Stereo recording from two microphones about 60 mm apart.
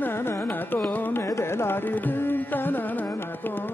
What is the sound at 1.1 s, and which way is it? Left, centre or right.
Carnatic music, left.